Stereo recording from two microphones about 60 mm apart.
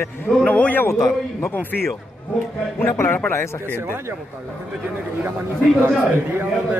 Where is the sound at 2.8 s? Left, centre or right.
Left.